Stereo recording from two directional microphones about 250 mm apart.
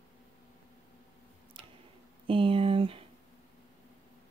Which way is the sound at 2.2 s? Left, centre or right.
Right.